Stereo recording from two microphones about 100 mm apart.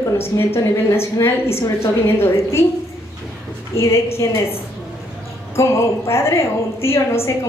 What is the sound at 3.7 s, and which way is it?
Speech, 30° left (ahead or behind).